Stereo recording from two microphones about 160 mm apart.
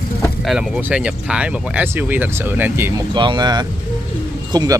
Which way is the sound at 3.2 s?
25° right (ahead or behind).